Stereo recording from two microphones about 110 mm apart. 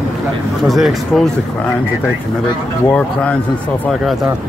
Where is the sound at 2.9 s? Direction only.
10° left (ahead or behind).